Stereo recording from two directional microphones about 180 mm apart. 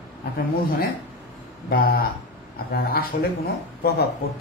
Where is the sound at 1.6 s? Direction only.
60° left (ahead or behind).